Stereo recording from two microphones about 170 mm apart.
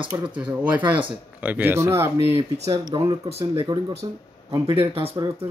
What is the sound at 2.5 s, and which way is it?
Speech, 40° right (ahead or behind).